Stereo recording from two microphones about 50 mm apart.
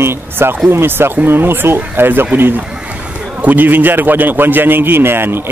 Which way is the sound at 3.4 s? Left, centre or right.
Right.